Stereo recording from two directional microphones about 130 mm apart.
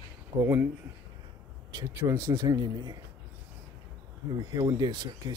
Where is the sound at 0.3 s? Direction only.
35° right (ahead or behind).